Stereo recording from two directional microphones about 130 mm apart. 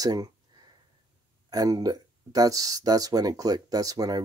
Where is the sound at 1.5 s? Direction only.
25° right (ahead or behind).